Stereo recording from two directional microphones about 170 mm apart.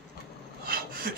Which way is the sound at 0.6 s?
60° right (ahead or behind).